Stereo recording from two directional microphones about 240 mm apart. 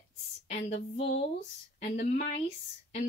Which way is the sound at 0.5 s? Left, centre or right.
Left.